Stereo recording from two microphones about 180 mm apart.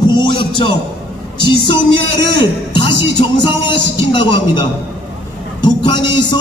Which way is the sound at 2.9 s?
80° right.